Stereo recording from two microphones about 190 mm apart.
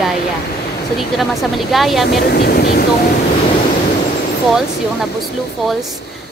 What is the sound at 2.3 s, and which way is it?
Speech, 55° left (ahead or behind).